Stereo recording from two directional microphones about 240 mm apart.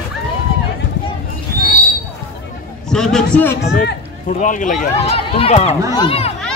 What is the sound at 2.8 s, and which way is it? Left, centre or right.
Speech, centre.